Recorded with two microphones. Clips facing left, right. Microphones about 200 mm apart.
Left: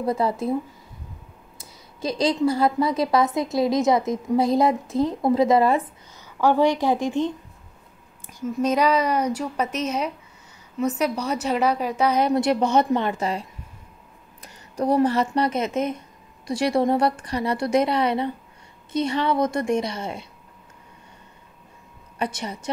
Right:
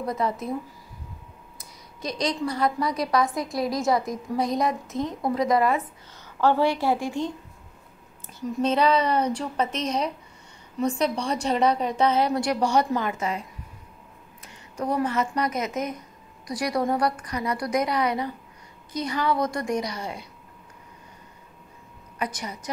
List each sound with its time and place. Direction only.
0.0 s a woman's voice: 30° left (ahead or behind)
1.6 s a woman's voice: 30° left (ahead or behind)
6.4 s speech: 15° left (ahead or behind)
8.5 s speech: 10° left (ahead or behind)
12.2 s a woman's voice: 20° left (ahead or behind)
22.2 s a woman's voice: 30° left (ahead or behind)